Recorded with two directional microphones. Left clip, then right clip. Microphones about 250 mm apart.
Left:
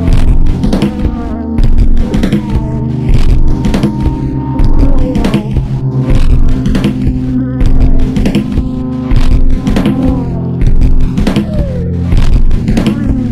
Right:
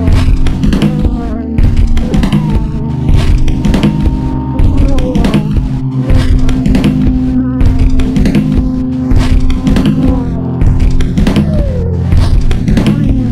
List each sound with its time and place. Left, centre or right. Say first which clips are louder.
3.6 s music: right 1 dB; centre
5.1 s music: right 1 dB; centre
8.1 s music: right 1 dB; right
9.7 s music: even; centre
11.1 s music: right 1 dB; centre
12.6 s music: even; centre